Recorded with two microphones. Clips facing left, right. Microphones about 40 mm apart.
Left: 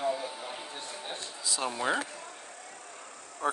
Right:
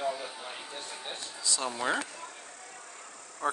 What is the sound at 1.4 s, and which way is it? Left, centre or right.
Speech, centre.